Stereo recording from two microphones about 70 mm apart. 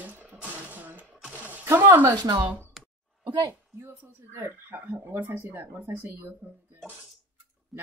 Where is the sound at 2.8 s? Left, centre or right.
Centre.